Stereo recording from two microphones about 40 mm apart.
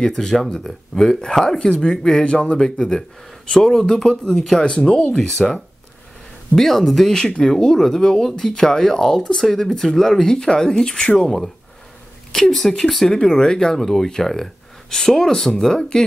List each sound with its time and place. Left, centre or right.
0.0 s speech: centre
1.9 s speech: centre
4.6 s speech: left
5.1 s speech: centre
11.1 s speech: centre